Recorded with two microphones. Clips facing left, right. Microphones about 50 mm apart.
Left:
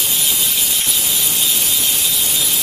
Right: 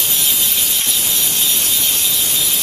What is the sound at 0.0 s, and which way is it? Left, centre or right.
Sawing, centre.